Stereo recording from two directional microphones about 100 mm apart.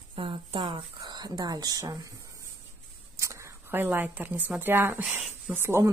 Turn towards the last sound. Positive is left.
turn(degrees=-25)  # may be behind; listen again after turning